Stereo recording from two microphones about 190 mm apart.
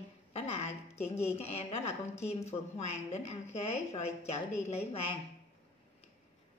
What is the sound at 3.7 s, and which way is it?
Speech, 35° left (ahead or behind).